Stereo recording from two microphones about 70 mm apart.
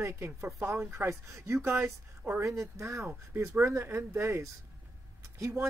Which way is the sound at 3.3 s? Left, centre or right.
Right.